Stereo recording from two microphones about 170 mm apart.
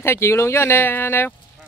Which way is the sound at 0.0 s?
15° left (ahead or behind).